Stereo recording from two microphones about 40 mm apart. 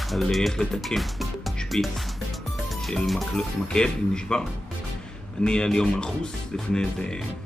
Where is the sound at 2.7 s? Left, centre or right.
Centre.